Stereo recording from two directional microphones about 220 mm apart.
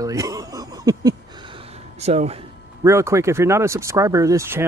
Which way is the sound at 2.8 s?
15° right (ahead or behind).